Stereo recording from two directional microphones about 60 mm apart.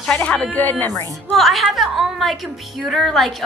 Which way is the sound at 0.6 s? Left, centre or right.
Left.